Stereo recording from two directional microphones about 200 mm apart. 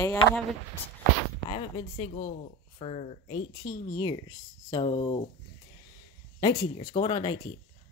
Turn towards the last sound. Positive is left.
turn(degrees=25)  # may be behind; listen again after turning